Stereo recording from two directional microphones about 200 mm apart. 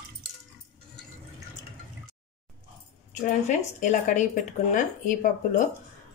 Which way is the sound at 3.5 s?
40° left (ahead or behind).